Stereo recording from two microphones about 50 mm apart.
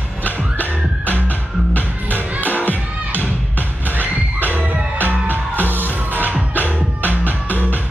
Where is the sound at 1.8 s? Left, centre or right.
Right.